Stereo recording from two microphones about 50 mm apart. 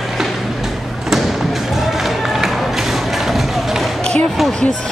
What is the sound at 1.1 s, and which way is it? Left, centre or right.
Music, centre.